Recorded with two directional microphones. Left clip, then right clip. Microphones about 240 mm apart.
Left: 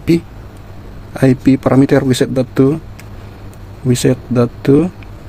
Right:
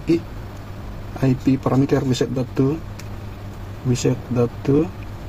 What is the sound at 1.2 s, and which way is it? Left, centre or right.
Speech, left.